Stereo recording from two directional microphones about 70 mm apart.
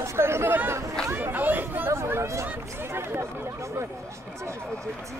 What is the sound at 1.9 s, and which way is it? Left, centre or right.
Speech, right.